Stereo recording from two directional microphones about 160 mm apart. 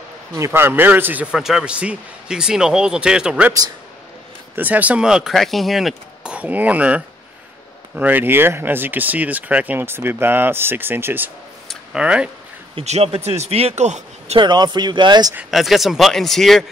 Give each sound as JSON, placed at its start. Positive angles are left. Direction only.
{"t": 0.3, "sound": "speech", "side_deg": -15}
{"t": 4.6, "sound": "speech", "side_deg": -10}
{"t": 12.7, "sound": "speech", "side_deg": -40}
{"t": 14.4, "sound": "speech", "side_deg": -25}
{"t": 15.5, "sound": "speech", "side_deg": 0}